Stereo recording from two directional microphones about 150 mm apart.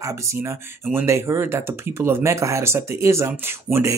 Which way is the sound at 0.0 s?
20° right (ahead or behind).